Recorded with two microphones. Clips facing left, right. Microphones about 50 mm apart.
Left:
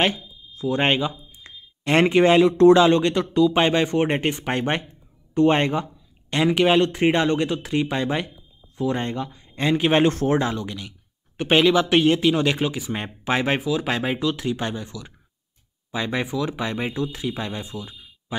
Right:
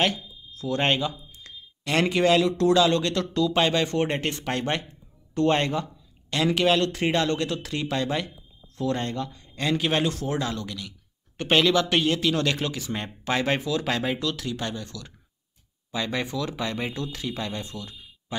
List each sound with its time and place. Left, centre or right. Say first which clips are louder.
0.0 s a sound: left 3 dB; left
1.4 s speech: left 7 dB; left
10.5 s speech: left 3 dB; left